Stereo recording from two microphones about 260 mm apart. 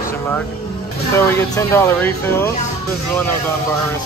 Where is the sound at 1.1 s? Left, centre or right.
Centre.